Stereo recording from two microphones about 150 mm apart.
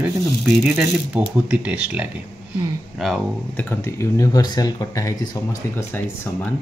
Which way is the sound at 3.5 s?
15° left (ahead or behind).